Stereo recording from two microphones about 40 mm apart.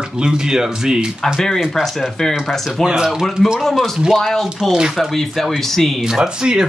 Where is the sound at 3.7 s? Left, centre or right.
Centre.